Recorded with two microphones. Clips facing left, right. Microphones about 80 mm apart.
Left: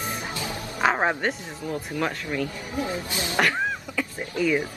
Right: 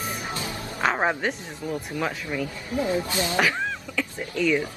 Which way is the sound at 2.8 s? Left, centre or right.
Right.